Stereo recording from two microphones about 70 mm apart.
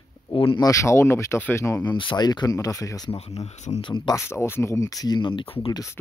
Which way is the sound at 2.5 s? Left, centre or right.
Left.